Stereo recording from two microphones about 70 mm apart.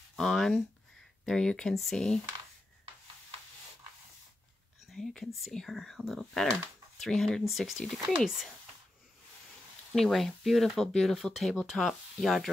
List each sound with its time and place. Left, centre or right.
0.1 s speech: centre
4.9 s speech: centre
10.1 s speech: centre